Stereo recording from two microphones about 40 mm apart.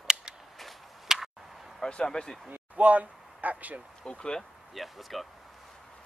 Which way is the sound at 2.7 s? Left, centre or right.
Right.